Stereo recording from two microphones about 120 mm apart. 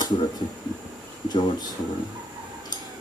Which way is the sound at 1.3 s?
35° left (ahead or behind).